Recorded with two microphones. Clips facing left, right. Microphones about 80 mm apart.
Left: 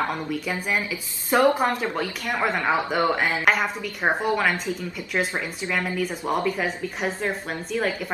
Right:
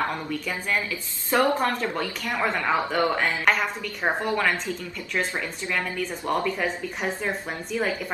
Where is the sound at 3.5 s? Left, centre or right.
Centre.